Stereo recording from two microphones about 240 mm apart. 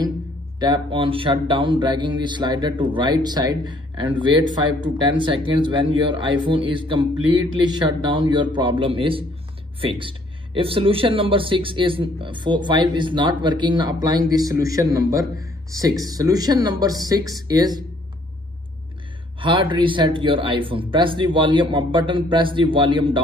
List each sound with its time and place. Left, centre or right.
0.6 s speech: centre
19.4 s speech: right